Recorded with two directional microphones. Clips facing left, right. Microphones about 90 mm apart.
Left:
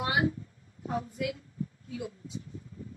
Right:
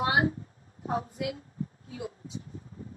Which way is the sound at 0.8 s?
35° right (ahead or behind).